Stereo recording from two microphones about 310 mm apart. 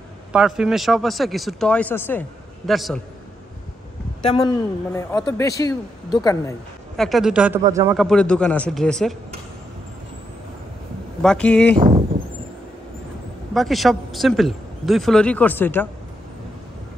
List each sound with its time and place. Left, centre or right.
0.3 s speech: centre
4.9 s speech: centre
7.0 s speech: centre
11.2 s speech: centre
11.7 s speech: centre
13.5 s speech: centre